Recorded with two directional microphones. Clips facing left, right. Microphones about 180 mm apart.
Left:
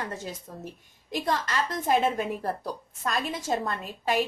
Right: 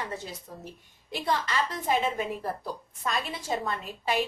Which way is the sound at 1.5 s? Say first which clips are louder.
Left 2 dB; 45° left (ahead or behind).